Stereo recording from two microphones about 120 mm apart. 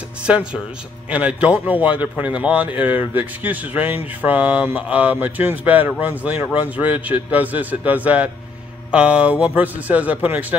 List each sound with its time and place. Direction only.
0.3 s speech: 10° right (ahead or behind)